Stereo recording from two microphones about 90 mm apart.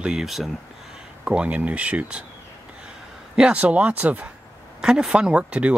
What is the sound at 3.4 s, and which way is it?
Speech, 15° right (ahead or behind).